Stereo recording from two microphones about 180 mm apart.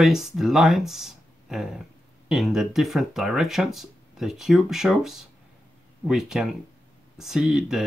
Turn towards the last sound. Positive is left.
turn(degrees=0)  # may be behind; listen again after turning